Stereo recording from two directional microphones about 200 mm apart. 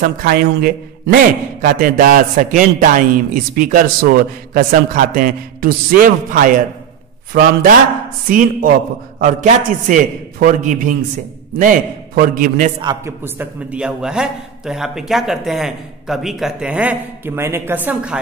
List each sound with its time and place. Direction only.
0.0 s a man's voice: 50° right (ahead or behind)
12.8 s a man's voice: 10° right (ahead or behind)